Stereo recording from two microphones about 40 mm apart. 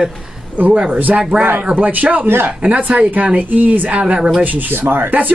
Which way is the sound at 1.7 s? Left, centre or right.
Right.